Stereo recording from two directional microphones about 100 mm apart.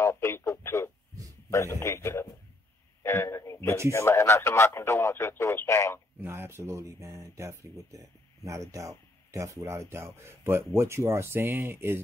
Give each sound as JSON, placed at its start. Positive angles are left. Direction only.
{"t": 0.0, "sound": "radio", "side_deg": 25}
{"t": 1.5, "sound": "speech", "side_deg": 25}
{"t": 3.0, "sound": "a sound", "side_deg": 25}
{"t": 3.9, "sound": "speech", "side_deg": 30}
{"t": 6.2, "sound": "a sound", "side_deg": -25}
{"t": 8.5, "sound": "speech", "side_deg": -30}